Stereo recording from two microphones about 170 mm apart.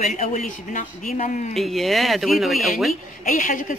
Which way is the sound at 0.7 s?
45° left (ahead or behind).